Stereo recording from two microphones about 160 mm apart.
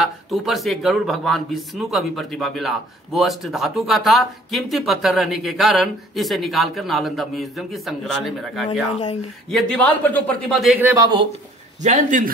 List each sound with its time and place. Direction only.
0.0 s speech: centre (ahead or behind)
9.5 s a man's voice: 10° left (ahead or behind)
11.0 s speech: 25° right (ahead or behind)
11.8 s a man's voice: 50° right (ahead or behind)